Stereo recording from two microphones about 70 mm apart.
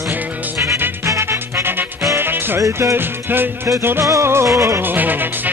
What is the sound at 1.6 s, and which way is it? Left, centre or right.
Music, right.